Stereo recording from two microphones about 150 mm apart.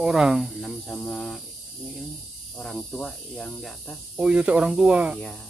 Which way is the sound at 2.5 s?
Centre (ahead or behind).